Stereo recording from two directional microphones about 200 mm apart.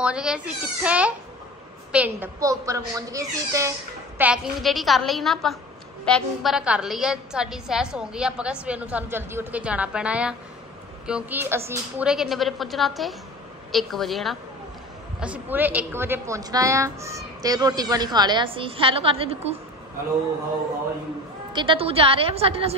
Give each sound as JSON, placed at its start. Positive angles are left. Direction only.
{"t": 0.0, "sound": "a woman's voice", "side_deg": -5}
{"t": 4.2, "sound": "a woman's voice", "side_deg": -5}
{"t": 21.5, "sound": "a woman's voice", "side_deg": -25}